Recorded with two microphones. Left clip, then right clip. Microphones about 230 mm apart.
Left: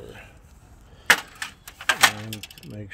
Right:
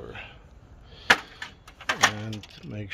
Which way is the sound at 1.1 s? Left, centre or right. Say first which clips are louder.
Left 1 dB; centre.